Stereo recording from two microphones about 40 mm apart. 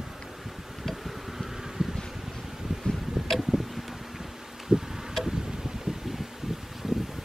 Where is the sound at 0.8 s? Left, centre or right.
Centre.